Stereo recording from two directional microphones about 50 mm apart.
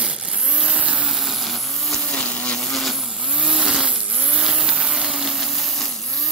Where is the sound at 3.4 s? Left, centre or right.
Centre.